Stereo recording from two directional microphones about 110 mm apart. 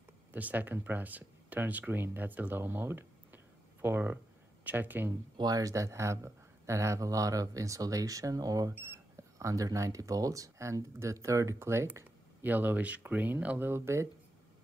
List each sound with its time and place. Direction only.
0.3 s speech: 15° right (ahead or behind)
5.4 s speech: 35° right (ahead or behind)
8.7 s speech: 20° right (ahead or behind)